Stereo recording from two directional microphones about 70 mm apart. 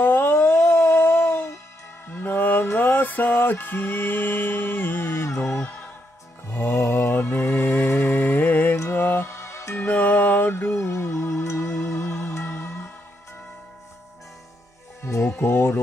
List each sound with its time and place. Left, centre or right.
0.0 s howl: left
2.0 s music: left
6.5 s mantra: left
8.9 s music: left
9.8 s music: left
15.0 s music: left
15.2 s music: left